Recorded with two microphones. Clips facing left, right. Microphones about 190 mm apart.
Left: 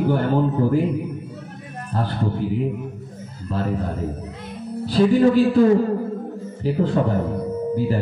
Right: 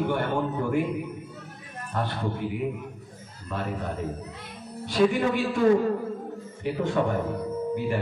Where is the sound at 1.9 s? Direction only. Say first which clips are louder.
Left 4 dB; 30° left (ahead or behind).